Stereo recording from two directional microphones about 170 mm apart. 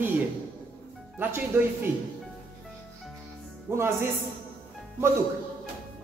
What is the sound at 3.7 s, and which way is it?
Speech, 15° right (ahead or behind).